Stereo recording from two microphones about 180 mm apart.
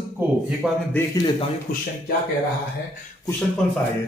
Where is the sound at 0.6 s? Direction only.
5° right (ahead or behind).